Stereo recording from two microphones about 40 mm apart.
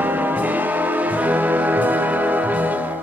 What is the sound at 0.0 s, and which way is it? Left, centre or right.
Music, right.